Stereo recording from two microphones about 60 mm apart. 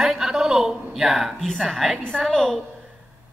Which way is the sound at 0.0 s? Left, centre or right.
Centre.